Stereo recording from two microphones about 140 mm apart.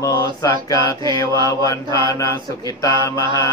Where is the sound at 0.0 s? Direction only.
25° left (ahead or behind).